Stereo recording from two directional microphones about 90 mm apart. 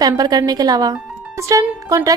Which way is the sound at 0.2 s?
45° right (ahead or behind).